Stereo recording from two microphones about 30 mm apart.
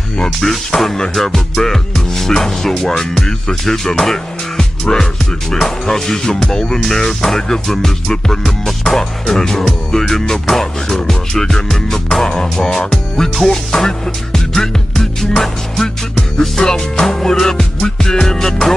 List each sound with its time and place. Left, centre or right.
0.7 s music: left
1.1 s music: centre
13.7 s music: centre